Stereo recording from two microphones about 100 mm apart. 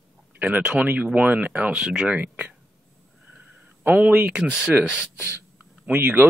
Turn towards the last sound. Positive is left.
turn(degrees=-20)  # may be behind; listen again after turning